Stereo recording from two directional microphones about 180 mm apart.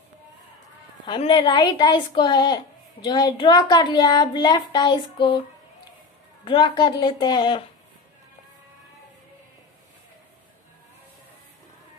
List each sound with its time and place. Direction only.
1.0 s a woman's voice: 25° left (ahead or behind)
6.4 s a woman's voice: 25° left (ahead or behind)